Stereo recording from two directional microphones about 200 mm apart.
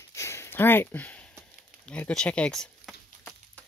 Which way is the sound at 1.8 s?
5° left (ahead or behind).